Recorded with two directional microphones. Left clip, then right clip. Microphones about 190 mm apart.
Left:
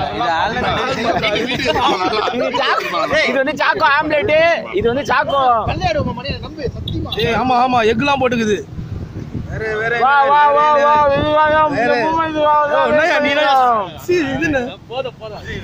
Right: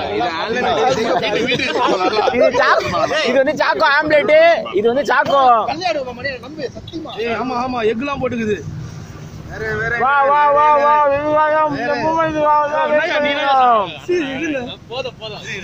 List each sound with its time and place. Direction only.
0.6 s speech: 35° left (ahead or behind)
1.2 s speech: 20° left (ahead or behind)
3.1 s speech: 30° left (ahead or behind)
3.3 s speech: centre (ahead or behind)
5.7 s speech: 20° left (ahead or behind)
7.2 s a man's voice: 45° left (ahead or behind)
9.6 s speech: 25° left (ahead or behind)
10.0 s speech: centre (ahead or behind)
11.7 s a man's voice: 50° left (ahead or behind)
12.1 s speech: centre (ahead or behind)
12.8 s a man's voice: 55° left (ahead or behind)
13.6 s speech: 10° right (ahead or behind)
14.1 s a man's voice: 55° left (ahead or behind)